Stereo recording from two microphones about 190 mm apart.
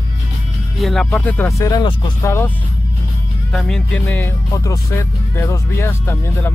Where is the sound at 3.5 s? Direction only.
Centre (ahead or behind).